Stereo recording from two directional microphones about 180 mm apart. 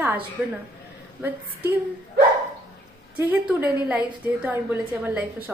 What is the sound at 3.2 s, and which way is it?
A woman's voice, 10° right (ahead or behind).